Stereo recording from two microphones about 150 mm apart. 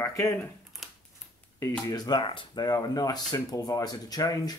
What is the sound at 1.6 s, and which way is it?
Speech, 25° left (ahead or behind).